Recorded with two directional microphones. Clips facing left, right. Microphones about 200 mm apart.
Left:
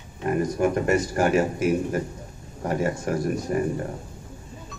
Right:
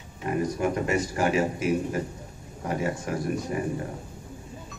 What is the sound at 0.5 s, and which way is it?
A man's voice, 50° left (ahead or behind).